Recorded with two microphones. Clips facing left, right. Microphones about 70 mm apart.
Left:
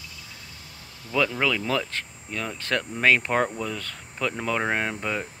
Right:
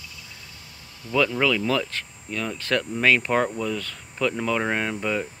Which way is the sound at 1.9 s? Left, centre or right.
Left.